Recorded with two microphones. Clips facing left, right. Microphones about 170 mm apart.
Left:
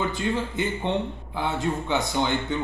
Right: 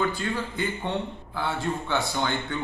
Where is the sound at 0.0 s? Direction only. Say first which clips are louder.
Left 1 dB; 20° left (ahead or behind).